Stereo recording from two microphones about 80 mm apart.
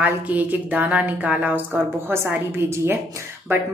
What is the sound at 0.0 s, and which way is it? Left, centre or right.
A woman's voice, right.